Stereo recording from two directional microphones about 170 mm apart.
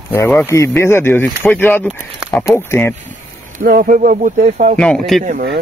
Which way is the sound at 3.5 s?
55° right (ahead or behind).